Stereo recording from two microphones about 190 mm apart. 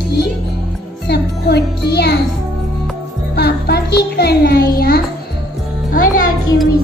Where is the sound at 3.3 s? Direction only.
60° left (ahead or behind).